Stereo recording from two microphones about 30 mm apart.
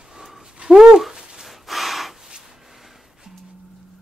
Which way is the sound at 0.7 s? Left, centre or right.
Centre.